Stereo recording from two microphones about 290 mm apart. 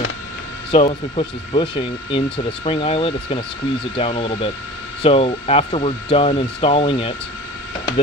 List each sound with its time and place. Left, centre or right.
0.7 s speech: centre